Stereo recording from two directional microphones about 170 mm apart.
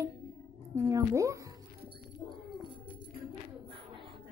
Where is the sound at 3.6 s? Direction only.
30° right (ahead or behind).